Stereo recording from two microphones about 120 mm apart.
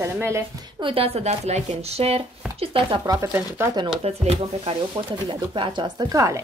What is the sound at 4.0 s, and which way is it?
Speech, 55° right (ahead or behind).